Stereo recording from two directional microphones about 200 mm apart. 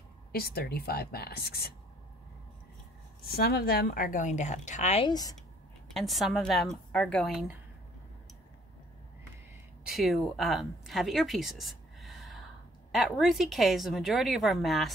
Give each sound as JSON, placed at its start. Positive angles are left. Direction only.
{"t": 0.3, "sound": "a woman's voice", "side_deg": 50}
{"t": 3.3, "sound": "speech", "side_deg": 50}
{"t": 5.9, "sound": "a woman's voice", "side_deg": 0}
{"t": 9.8, "sound": "a woman's voice", "side_deg": 0}